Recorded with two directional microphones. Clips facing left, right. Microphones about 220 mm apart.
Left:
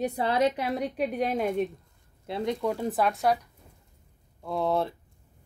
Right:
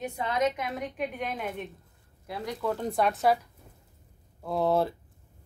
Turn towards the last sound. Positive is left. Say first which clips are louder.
# right 1 dB
turn(degrees=0)  # may be behind; listen again after turning